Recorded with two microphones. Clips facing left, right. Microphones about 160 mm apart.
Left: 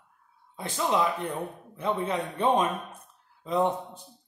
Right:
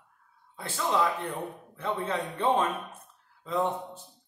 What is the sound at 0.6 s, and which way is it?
Speech, 20° left (ahead or behind).